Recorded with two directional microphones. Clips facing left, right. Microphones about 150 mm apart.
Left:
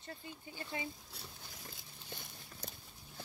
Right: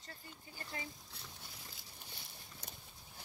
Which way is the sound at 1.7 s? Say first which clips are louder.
Left 4 dB; 55° left (ahead or behind).